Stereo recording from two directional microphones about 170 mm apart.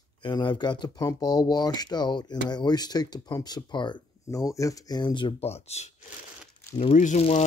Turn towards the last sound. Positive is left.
turn(degrees=40)  # may be behind; listen again after turning